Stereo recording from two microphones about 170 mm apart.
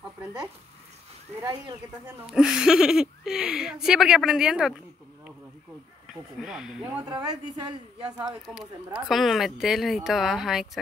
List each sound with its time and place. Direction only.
1.4 s a woman's voice: 25° right (ahead or behind)
2.0 s speech: 5° right (ahead or behind)
6.3 s speech: 5° right (ahead or behind)
7.1 s a woman's voice: 25° right (ahead or behind)
8.5 s speech: 5° left (ahead or behind)